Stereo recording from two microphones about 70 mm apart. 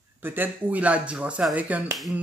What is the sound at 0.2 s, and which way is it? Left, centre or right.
Speech, right.